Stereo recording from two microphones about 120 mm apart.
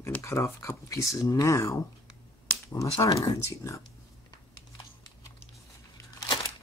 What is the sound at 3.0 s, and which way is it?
Speech, 25° left (ahead or behind).